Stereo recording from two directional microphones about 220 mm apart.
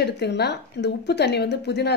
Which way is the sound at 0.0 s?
50° left (ahead or behind).